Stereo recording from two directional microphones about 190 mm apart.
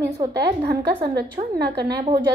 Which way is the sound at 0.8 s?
25° right (ahead or behind).